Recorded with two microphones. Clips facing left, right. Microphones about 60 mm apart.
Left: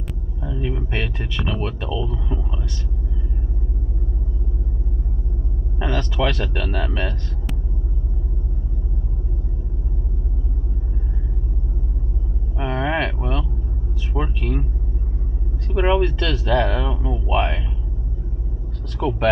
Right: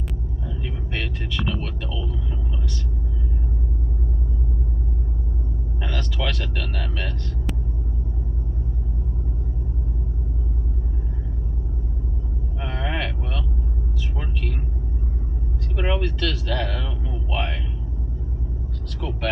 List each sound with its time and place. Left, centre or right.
0.6 s a sound: left
5.8 s speech: left
12.5 s a sound: left
14.1 s speech: left
15.7 s speech: left
18.9 s speech: left